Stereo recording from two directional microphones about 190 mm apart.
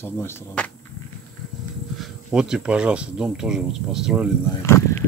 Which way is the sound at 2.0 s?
5° right (ahead or behind).